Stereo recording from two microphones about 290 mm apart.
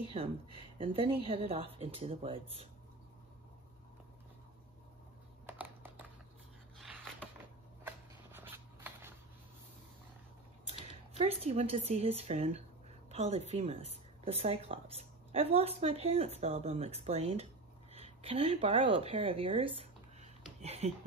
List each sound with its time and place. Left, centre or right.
0.1 s a woman's voice: centre
5.5 s typing: centre
6.8 s a sound: centre
11.1 s a woman's voice: right